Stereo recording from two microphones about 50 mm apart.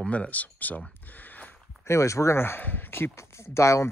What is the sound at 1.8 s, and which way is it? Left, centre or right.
Speech, left.